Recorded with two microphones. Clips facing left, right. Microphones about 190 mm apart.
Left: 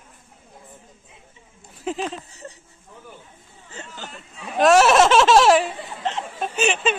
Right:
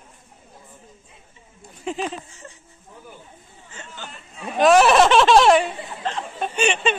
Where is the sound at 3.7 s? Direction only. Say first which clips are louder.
Left 2 dB; 40° left (ahead or behind).